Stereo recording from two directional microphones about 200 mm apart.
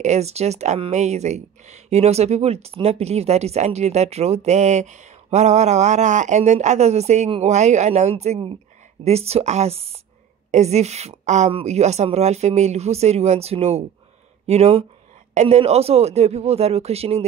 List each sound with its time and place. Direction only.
0.0 s speech: 35° right (ahead or behind)